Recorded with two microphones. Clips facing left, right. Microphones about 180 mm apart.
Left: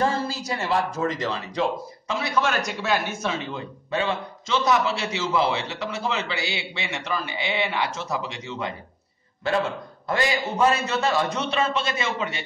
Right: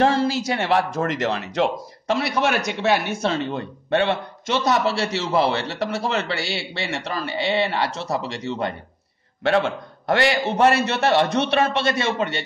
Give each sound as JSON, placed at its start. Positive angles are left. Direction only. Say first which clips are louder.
{"t": 0.0, "sound": "speech", "louder": "right 6 dB", "side_deg": -80}
{"t": 9.4, "sound": "speech", "louder": "right 4 dB", "side_deg": -80}